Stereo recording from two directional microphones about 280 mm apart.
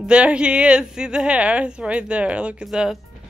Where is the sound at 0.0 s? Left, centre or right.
Centre.